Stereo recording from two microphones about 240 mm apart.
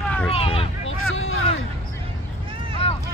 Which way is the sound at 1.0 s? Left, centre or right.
Left.